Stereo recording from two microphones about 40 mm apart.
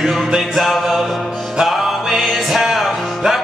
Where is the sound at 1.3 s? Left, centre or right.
Centre.